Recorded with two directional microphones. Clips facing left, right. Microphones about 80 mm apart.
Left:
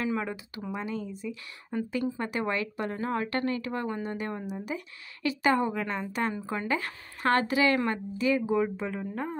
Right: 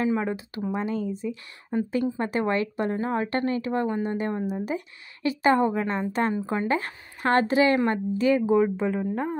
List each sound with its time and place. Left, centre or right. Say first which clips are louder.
0.0 s a woman's voice: right 5 dB; right
1.1 s a woman's voice: right 5 dB; right